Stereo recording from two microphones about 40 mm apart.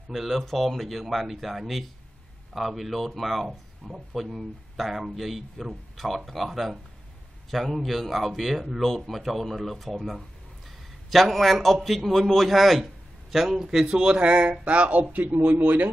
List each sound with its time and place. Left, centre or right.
0.1 s a man's voice: centre; by 15.9 s right